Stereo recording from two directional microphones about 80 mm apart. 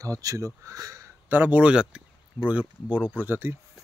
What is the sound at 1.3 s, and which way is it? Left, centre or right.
Speech, right.